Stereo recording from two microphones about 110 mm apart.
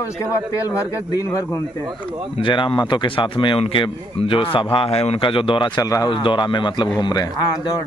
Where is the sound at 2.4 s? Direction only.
50° left (ahead or behind).